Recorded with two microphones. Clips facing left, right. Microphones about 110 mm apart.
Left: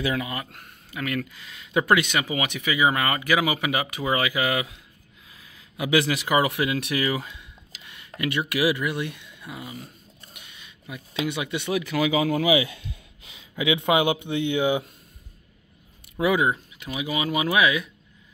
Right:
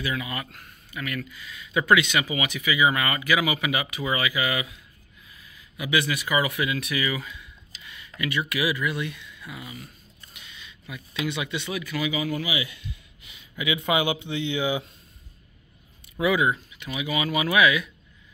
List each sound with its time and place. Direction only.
0.2 s speech: 30° left (ahead or behind)
0.5 s speech: 65° left (ahead or behind)
1.7 s speech: 45° left (ahead or behind)
5.3 s a sound: 90° left
6.2 s speech: 60° left (ahead or behind); by 9.8 s 40° left (ahead or behind)
10.9 s speech: 50° left (ahead or behind)
11.7 s speech: 75° left (ahead or behind); by 12.4 s 90° left
13.8 s speech: 55° left (ahead or behind)
16.2 s speech: 35° left (ahead or behind)